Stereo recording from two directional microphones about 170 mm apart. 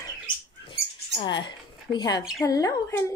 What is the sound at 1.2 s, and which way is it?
Speech, 25° left (ahead or behind).